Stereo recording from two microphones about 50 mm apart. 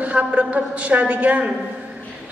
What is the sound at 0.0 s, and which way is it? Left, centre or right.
A man's voice, right.